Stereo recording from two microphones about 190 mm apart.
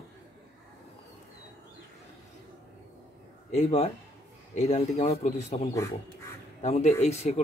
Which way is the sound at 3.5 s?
35° left (ahead or behind).